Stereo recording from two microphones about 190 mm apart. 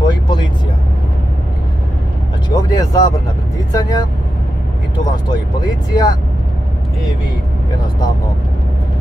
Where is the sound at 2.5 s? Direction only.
20° left (ahead or behind).